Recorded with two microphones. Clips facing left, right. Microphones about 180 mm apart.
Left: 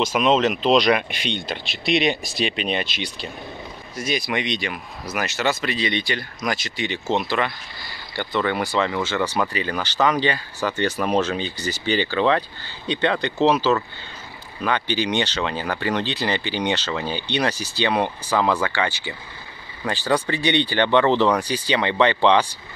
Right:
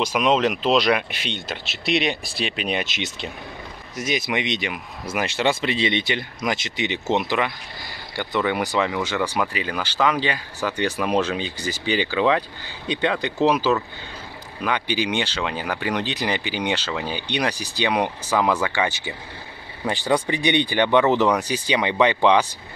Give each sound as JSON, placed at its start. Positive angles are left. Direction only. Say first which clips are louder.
{"t": 0.0, "sound": "speech", "louder": "left 1 dB", "side_deg": -10}
{"t": 2.8, "sound": "speech", "louder": "even", "side_deg": -20}
{"t": 18.9, "sound": "speech", "louder": "right 1 dB", "side_deg": -20}